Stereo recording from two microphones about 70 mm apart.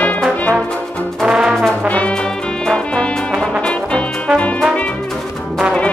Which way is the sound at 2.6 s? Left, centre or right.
Centre.